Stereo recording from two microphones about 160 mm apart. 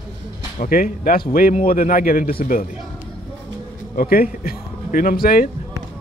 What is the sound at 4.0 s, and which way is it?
Speech, 70° left (ahead or behind).